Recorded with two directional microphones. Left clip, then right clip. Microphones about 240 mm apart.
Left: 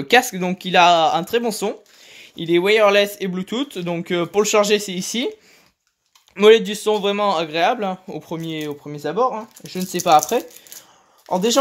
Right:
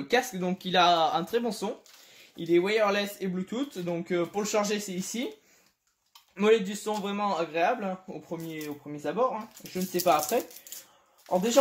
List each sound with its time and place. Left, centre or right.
0.1 s speech: left
6.3 s speech: left